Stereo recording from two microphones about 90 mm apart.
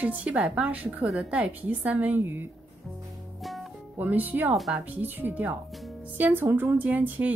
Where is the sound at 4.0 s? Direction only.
20° right (ahead or behind).